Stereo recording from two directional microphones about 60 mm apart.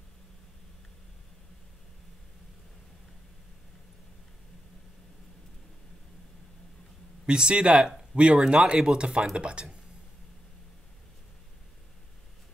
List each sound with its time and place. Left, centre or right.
7.2 s speech: centre